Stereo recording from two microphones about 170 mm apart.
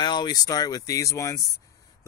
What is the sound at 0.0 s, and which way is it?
Speech, 25° left (ahead or behind).